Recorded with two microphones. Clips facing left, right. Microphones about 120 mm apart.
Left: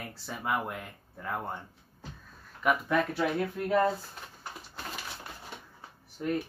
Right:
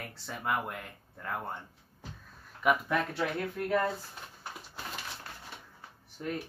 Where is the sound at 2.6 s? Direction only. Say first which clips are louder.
Left 1 dB; centre (ahead or behind).